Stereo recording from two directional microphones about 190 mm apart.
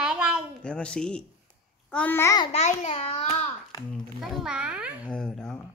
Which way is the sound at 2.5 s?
35° left (ahead or behind).